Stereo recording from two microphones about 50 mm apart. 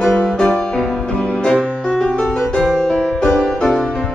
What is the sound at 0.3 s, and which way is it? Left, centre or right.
Music, centre.